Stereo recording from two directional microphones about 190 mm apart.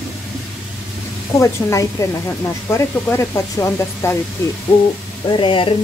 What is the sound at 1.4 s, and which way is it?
Speech, 15° left (ahead or behind).